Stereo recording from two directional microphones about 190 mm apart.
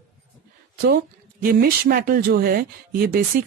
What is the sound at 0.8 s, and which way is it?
Speech, 50° right (ahead or behind).